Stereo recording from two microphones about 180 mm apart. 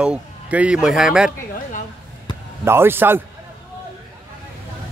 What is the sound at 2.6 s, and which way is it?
Speech, 15° right (ahead or behind).